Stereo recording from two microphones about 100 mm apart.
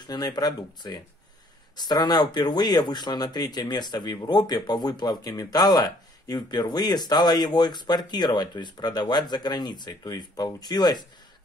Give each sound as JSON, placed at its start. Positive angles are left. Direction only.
{"t": 0.0, "sound": "speech", "side_deg": 45}